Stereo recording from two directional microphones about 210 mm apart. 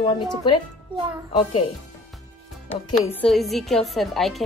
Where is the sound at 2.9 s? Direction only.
5° left (ahead or behind).